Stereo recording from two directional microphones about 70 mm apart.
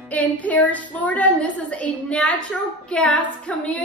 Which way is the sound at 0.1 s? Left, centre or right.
Left.